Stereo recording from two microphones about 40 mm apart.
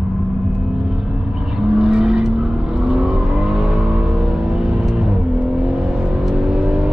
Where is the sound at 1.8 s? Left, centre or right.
Centre.